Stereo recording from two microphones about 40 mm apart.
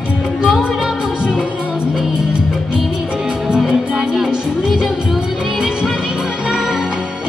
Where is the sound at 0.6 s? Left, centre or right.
Centre.